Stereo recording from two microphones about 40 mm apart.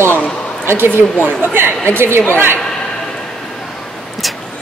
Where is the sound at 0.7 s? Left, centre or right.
Right.